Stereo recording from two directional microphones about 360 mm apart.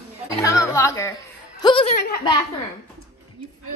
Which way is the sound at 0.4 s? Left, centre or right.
Centre.